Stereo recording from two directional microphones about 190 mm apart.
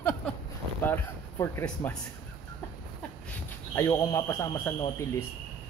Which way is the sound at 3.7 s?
15° left (ahead or behind).